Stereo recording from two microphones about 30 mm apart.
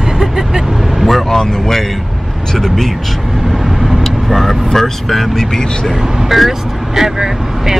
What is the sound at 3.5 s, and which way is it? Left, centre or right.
Vehicle, centre.